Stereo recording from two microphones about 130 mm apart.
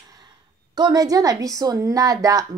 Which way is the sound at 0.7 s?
30° right (ahead or behind).